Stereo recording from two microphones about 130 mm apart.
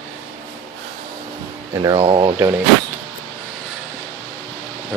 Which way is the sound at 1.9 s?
45° right (ahead or behind).